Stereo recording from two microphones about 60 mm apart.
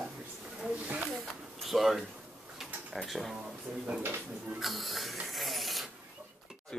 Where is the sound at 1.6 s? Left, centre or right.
Centre.